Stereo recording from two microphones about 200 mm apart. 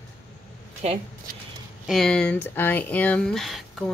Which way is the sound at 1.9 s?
5° left (ahead or behind).